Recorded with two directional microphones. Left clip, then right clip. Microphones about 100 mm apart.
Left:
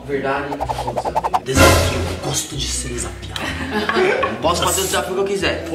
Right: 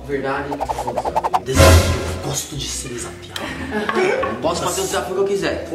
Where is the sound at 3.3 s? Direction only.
25° right (ahead or behind).